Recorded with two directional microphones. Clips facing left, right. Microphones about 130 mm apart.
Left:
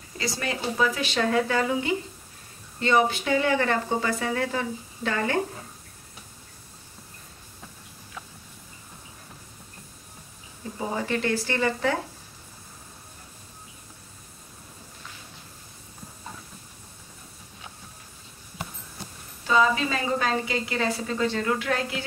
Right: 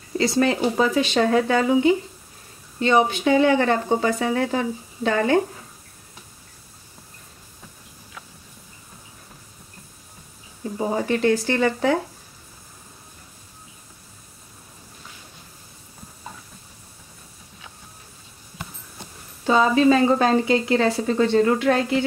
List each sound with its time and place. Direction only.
0.2 s speech: 30° right (ahead or behind)
10.8 s speech: 30° right (ahead or behind)
11.1 s speech: 20° right (ahead or behind)
19.4 s a woman's voice: 35° right (ahead or behind)